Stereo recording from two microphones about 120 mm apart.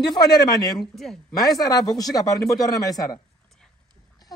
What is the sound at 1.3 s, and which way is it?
Speech, 30° left (ahead or behind).